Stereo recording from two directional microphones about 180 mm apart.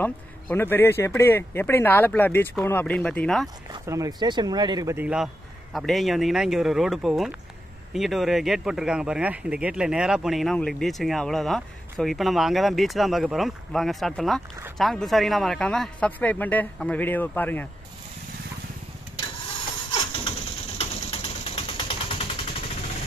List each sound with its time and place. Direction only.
0.0 s a man's voice: 10° left (ahead or behind)
3.8 s a man's voice: 20° right (ahead or behind); by 17.6 s 10° left (ahead or behind)
19.9 s a sound: 35° left (ahead or behind)